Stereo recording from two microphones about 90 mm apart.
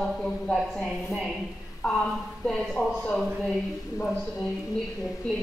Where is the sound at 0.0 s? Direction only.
10° left (ahead or behind).